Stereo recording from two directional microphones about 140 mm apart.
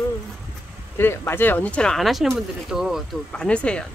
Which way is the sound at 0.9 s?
15° left (ahead or behind).